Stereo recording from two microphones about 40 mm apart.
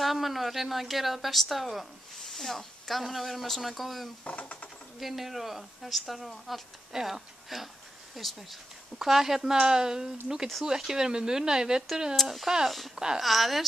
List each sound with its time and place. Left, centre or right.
0.0 s a woman's voice: centre
4.2 s speech: left
5.0 s a woman's voice: centre
13.2 s a woman's voice: centre